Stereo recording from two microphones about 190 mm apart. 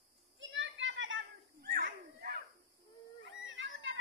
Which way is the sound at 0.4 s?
75° right (ahead or behind).